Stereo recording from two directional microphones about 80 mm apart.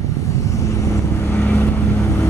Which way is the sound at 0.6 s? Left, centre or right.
Left.